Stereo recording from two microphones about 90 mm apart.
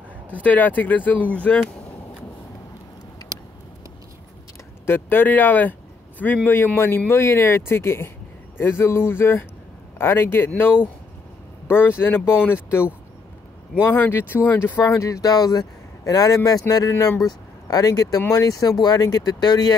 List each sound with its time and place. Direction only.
0.4 s speech: 20° left (ahead or behind)
4.8 s speech: 25° left (ahead or behind)
13.9 s speech: 20° left (ahead or behind)
14.8 s speech: 35° left (ahead or behind); by 19.7 s 50° left (ahead or behind)